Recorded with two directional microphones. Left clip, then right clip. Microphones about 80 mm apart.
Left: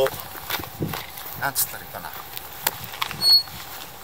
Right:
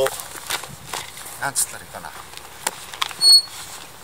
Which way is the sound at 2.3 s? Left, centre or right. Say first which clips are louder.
Even; left.